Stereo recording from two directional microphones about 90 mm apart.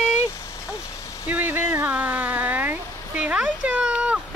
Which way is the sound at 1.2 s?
20° right (ahead or behind).